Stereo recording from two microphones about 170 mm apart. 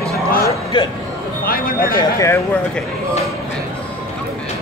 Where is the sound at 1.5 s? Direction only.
60° left (ahead or behind).